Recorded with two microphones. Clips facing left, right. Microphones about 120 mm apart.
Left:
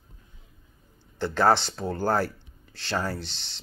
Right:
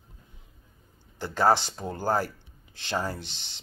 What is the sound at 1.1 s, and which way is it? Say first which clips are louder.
Speech: left 1 dB; 10° right (ahead or behind).